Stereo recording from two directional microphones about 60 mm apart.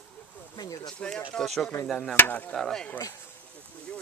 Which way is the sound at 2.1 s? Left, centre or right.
Left.